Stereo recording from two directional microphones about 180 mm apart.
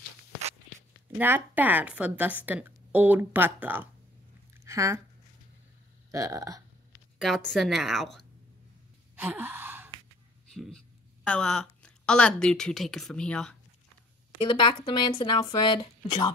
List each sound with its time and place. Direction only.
1.1 s speech: 10° right (ahead or behind)
6.1 s speech: 20° right (ahead or behind)
7.2 s a woman's voice: centre (ahead or behind)
9.2 s gasp: 10° right (ahead or behind)
10.5 s a woman's voice: centre (ahead or behind)
14.4 s speech: 25° left (ahead or behind)